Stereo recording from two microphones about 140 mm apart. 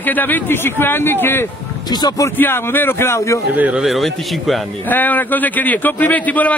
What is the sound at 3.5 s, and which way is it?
Speech, 10° right (ahead or behind).